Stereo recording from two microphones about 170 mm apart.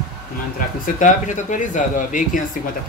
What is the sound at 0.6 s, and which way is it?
Speech, 50° left (ahead or behind).